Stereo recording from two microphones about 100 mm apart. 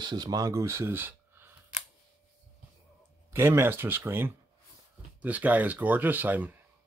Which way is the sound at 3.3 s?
25° right (ahead or behind).